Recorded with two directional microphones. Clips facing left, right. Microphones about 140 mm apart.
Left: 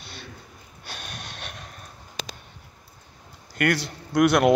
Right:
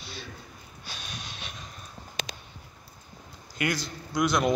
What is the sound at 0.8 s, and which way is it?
Snort, 55° left (ahead or behind).